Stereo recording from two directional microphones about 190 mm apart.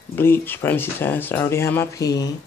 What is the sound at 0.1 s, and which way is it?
Speech, 10° left (ahead or behind).